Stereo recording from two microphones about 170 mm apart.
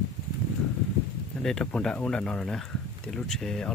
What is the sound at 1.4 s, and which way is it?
Speech, 5° left (ahead or behind).